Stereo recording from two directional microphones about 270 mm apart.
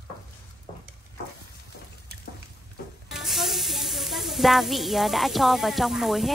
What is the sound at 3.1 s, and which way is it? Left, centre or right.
Sizzle, centre.